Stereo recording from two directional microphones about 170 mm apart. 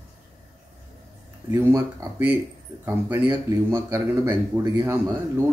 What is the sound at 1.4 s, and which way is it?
Speech, 15° right (ahead or behind).